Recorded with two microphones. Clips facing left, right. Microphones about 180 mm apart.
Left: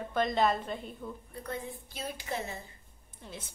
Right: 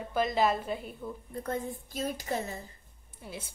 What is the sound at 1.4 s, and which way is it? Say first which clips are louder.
A woman's voice: right 4 dB; 45° right (ahead or behind).